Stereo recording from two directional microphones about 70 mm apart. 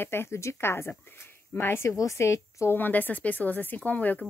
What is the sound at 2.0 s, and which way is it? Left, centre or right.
Speech, left.